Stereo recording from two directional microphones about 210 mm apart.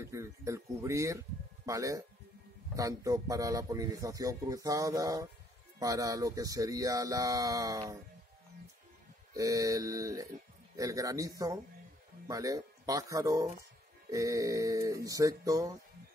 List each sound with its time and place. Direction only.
0.0 s a man's voice: 15° right (ahead or behind)
9.3 s a man's voice: 15° right (ahead or behind)